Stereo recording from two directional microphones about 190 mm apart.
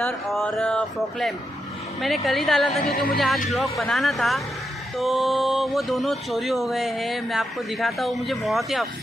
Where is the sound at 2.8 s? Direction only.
50° left (ahead or behind).